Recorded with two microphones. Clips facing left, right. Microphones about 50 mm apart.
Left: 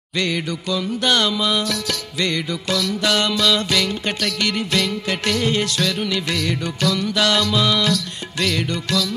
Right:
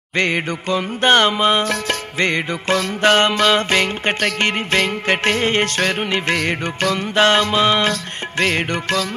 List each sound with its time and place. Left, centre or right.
0.2 s music: right